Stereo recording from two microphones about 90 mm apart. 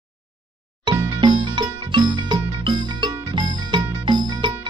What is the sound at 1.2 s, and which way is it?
Music, 60° right (ahead or behind).